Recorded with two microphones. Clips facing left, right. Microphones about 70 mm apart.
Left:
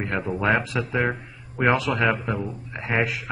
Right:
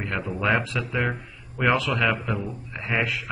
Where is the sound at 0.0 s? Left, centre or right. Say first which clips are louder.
Left 2 dB; centre.